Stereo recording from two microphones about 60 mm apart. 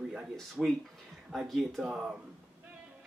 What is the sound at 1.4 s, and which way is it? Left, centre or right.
Speech, centre.